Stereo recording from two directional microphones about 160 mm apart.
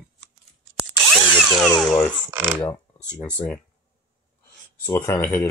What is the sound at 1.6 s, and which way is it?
Speech, centre (ahead or behind).